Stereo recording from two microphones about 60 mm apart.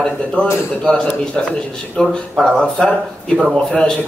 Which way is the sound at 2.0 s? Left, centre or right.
Centre.